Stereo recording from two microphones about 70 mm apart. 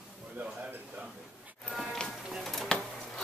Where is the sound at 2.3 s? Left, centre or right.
Centre.